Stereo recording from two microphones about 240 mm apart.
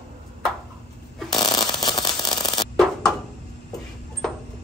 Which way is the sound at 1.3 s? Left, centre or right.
Centre.